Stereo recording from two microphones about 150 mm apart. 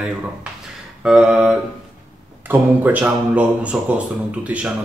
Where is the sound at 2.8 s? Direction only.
10° right (ahead or behind).